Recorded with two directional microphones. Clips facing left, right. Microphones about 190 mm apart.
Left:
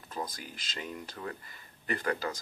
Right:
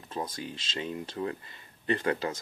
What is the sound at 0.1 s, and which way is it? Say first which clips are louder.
Speech: right 4 dB; 25° right (ahead or behind).